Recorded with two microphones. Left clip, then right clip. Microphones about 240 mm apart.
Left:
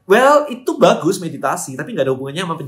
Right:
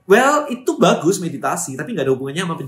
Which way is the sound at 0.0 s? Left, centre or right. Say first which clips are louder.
Left 3 dB; centre.